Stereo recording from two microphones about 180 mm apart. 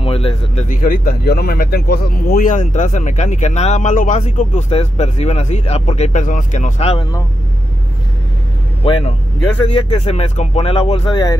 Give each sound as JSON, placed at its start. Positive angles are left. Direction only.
{"t": 0.0, "sound": "speech", "side_deg": 30}
{"t": 0.7, "sound": "speech", "side_deg": 50}
{"t": 8.8, "sound": "speech", "side_deg": 30}